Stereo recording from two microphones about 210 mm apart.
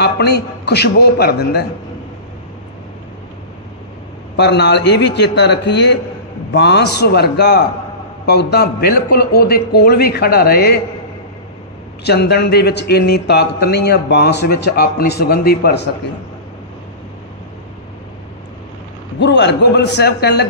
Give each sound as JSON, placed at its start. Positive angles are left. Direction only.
{"t": 0.0, "sound": "speech", "side_deg": 50}
{"t": 4.4, "sound": "a man's voice", "side_deg": 55}
{"t": 12.0, "sound": "a man's voice", "side_deg": 50}
{"t": 19.1, "sound": "a man's voice", "side_deg": 55}